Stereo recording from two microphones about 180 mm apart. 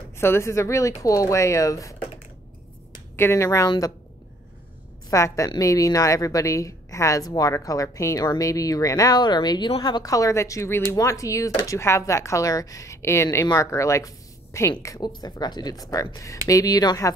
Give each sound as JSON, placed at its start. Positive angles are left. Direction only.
{"t": 0.1, "sound": "a woman's voice", "side_deg": 15}
{"t": 3.2, "sound": "a woman's voice", "side_deg": 15}
{"t": 5.1, "sound": "a woman's voice", "side_deg": 15}